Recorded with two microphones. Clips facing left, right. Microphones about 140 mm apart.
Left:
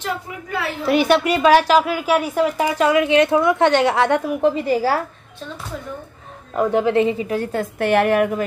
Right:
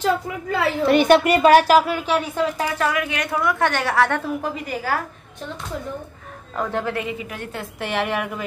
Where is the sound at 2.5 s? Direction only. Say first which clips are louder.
Left 6 dB; 20° left (ahead or behind).